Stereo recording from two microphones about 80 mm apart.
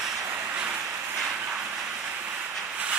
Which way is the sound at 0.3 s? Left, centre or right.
Right.